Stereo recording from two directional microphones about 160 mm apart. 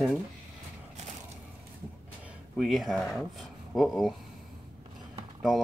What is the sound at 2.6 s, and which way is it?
Speech, centre (ahead or behind).